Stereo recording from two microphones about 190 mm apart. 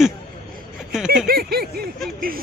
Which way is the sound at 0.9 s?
5° right (ahead or behind).